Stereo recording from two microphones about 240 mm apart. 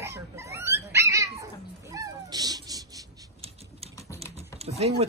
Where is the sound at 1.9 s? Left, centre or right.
Centre.